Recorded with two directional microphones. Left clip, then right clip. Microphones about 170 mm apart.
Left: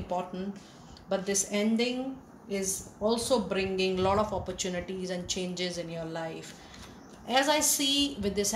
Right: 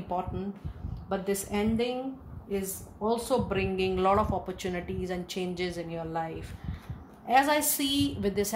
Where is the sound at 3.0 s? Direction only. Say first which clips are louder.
Even; 45° right (ahead or behind).